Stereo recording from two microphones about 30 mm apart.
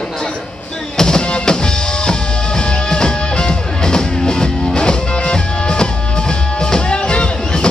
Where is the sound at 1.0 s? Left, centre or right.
Left.